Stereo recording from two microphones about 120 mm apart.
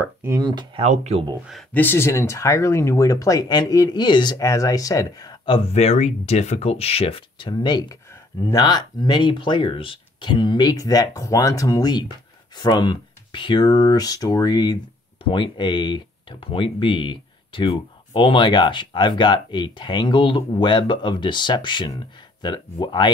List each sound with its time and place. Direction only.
0.0 s speech: 20° right (ahead or behind)
0.4 s speech: 35° right (ahead or behind)
0.8 s speech: 70° right (ahead or behind)
1.7 s speech: 15° left (ahead or behind); by 4.4 s 40° left (ahead or behind)
4.4 s speech: 25° left (ahead or behind); by 5.7 s 45° left (ahead or behind)
5.7 s speech: 65° left (ahead or behind); by 23.0 s 40° left (ahead or behind)